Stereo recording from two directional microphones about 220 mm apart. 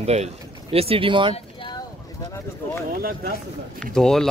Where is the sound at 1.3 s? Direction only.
20° left (ahead or behind).